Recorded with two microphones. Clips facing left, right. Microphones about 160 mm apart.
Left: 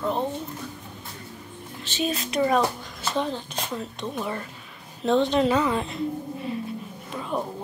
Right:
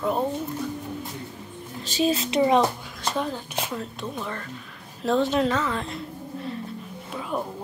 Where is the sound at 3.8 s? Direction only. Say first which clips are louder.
Left 1 dB; 5° left (ahead or behind).